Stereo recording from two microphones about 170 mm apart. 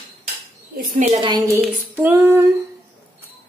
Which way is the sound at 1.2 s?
25° right (ahead or behind).